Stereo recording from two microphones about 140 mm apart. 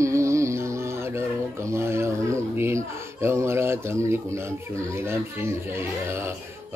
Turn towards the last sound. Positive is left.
turn(degrees=-20)  # may be behind; listen again after turning